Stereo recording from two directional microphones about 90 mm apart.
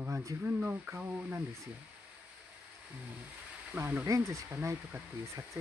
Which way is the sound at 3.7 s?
20° right (ahead or behind).